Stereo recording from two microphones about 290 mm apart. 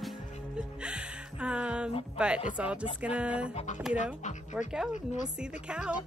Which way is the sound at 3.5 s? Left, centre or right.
Left.